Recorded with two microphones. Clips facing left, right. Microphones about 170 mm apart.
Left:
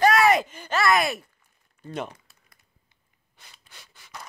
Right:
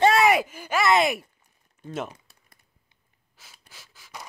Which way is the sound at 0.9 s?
25° right (ahead or behind).